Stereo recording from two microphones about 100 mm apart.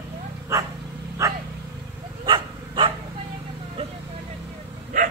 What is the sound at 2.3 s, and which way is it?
Dog, 60° right (ahead or behind).